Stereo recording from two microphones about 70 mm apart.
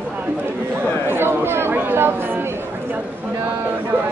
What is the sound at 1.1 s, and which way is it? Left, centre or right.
Chatter, right.